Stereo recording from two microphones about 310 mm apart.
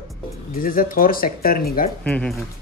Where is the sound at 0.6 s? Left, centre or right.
Left.